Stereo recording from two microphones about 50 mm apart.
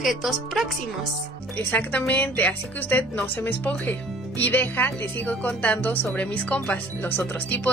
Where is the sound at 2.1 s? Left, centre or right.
Left.